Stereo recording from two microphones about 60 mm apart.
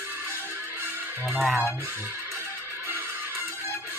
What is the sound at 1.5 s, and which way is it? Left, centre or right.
Speech, right.